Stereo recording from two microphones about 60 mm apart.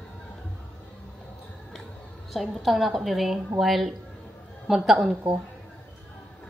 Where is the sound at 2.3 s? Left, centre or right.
Centre.